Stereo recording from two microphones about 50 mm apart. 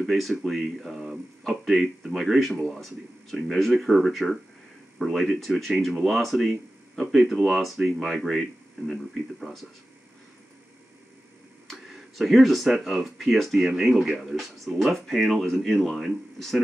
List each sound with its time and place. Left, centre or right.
0.0 s speech: centre
11.6 s speech: centre
14.1 s speech: centre